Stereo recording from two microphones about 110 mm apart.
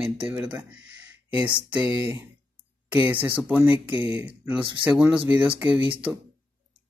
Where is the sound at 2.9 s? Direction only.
20° right (ahead or behind).